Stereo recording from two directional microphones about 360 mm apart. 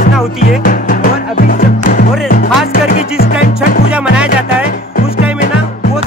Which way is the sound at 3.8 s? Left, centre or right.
Centre.